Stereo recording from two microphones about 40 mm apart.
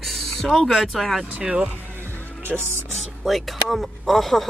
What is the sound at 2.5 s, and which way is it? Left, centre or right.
Speech, right.